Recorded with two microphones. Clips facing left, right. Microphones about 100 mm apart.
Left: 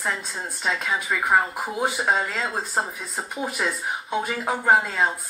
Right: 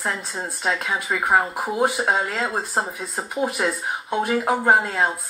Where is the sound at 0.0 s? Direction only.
5° right (ahead or behind).